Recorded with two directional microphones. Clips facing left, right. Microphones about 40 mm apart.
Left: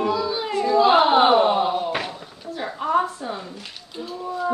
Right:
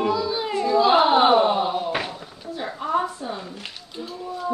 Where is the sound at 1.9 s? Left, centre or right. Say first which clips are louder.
Even; centre.